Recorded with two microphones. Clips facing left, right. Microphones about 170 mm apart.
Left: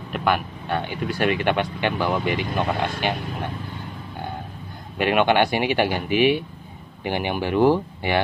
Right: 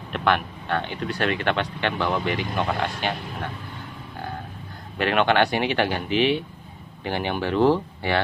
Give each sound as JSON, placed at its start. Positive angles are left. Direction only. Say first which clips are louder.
{"t": 0.1, "sound": "speech", "louder": "even", "side_deg": 5}
{"t": 4.9, "sound": "speech", "louder": "left 2 dB", "side_deg": 10}